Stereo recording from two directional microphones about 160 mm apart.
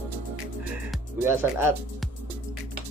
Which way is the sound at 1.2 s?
15° right (ahead or behind).